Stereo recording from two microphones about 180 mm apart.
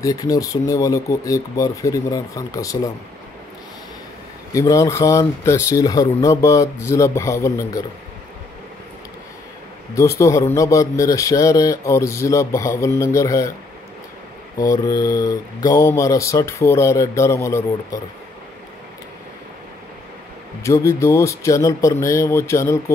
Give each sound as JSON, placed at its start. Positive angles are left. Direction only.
{"t": 0.0, "sound": "speech", "side_deg": 20}
{"t": 4.5, "sound": "a man's voice", "side_deg": 20}
{"t": 9.9, "sound": "a man's voice", "side_deg": 15}
{"t": 14.6, "sound": "a man's voice", "side_deg": 20}
{"t": 20.6, "sound": "a man's voice", "side_deg": 15}